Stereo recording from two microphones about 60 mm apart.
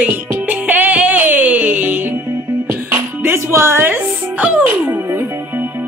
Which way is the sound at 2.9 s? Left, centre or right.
Right.